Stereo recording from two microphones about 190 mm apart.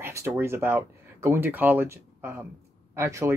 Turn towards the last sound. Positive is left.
turn(degrees=-15)  # may be behind; listen again after turning